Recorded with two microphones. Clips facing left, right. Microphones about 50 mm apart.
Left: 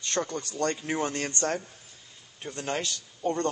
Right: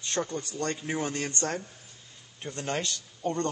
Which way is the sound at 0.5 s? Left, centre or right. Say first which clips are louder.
Left 3 dB; left.